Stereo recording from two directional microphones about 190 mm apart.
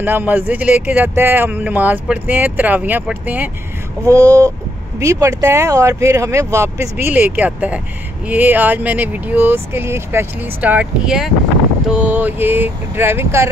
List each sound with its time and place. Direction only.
0.0 s speech: 10° right (ahead or behind)